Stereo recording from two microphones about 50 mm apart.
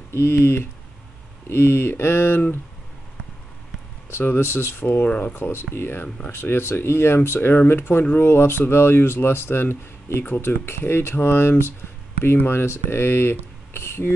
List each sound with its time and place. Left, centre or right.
0.1 s speech: left
4.2 s speech: left
5.6 s speech: left